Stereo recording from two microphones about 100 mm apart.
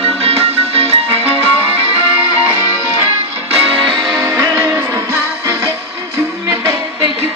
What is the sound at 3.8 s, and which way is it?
Music, centre (ahead or behind).